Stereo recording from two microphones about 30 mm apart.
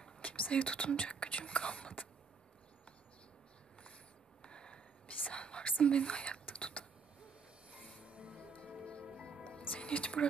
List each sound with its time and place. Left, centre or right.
0.2 s whispering: left
4.4 s whispering: left
5.9 s speech: left
6.4 s whispering: left
8.0 s music: right
9.4 s music: left